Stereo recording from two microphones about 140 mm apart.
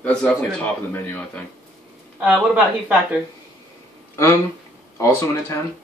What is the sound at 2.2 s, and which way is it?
Speech, 10° right (ahead or behind).